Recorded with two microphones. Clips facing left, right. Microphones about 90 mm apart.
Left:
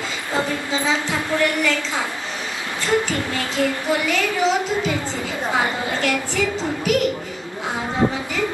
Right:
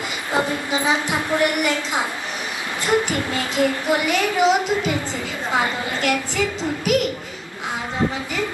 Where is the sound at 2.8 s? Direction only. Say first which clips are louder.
Right 1 dB; 20° right (ahead or behind).